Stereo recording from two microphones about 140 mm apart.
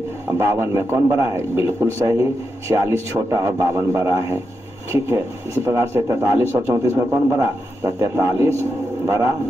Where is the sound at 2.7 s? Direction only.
20° right (ahead or behind).